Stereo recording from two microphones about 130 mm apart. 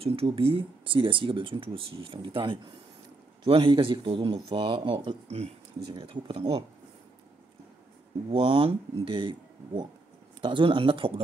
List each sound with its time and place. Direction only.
0.0 s speech: 50° right (ahead or behind)
8.3 s speech: 40° right (ahead or behind)